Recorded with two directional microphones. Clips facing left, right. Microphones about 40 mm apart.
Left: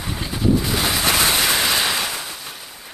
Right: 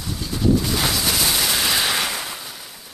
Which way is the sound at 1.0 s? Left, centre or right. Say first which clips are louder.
Left 3 dB; left.